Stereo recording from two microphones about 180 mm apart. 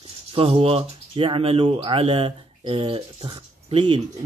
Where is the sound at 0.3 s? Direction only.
30° right (ahead or behind).